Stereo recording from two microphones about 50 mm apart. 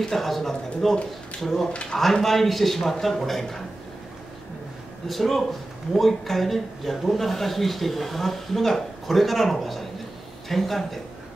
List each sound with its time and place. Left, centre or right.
0.0 s speech: centre
1.7 s speech: left
2.0 s speech: centre
5.0 s speech: centre